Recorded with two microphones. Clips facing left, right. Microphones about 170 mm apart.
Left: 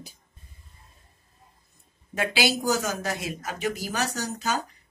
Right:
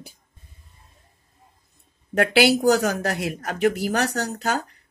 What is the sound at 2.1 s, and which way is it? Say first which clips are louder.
Speech: right 8 dB; 65° right (ahead or behind).